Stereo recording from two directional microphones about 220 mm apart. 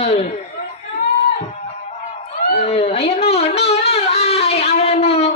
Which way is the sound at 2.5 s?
30° left (ahead or behind).